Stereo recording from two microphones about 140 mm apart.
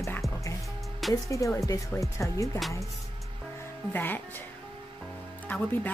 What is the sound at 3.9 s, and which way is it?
Music, 15° left (ahead or behind).